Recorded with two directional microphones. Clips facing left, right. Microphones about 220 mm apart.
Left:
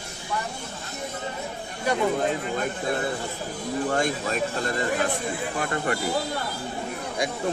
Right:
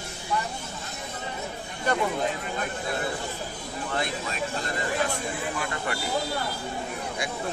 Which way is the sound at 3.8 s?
45° left (ahead or behind).